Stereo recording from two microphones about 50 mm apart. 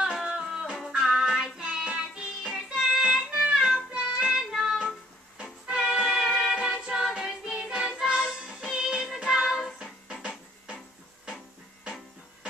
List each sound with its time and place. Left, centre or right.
0.0 s music: centre
1.6 s music: right
3.5 s music: centre
3.9 s child singing: centre
4.4 s music: centre
5.4 s music: centre